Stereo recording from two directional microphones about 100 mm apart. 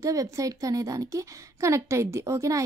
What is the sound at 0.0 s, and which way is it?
A woman's voice, 35° right (ahead or behind).